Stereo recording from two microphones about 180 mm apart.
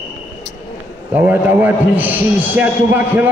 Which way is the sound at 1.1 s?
10° right (ahead or behind).